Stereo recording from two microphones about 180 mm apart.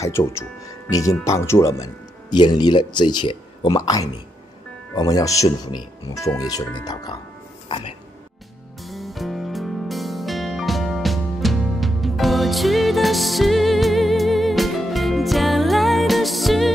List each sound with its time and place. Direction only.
0.0 s speech: 15° left (ahead or behind)
8.8 s music: centre (ahead or behind)